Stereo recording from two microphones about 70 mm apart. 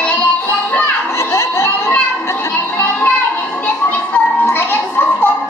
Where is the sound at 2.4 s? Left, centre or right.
Left.